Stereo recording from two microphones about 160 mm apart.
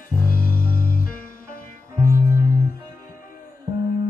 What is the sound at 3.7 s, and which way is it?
Music, 30° right (ahead or behind).